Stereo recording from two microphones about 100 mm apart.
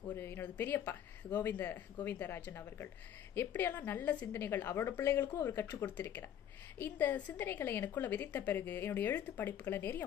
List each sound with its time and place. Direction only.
0.1 s a woman's voice: 20° left (ahead or behind)